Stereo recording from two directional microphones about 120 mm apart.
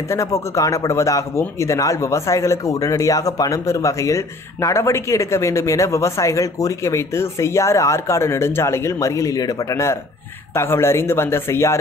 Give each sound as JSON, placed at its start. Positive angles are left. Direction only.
{"t": 0.1, "sound": "speech", "side_deg": 25}